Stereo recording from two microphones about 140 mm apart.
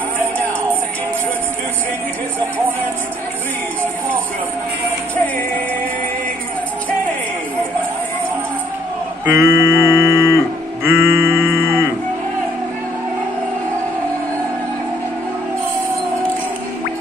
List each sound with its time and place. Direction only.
9.2 s music: 15° right (ahead or behind)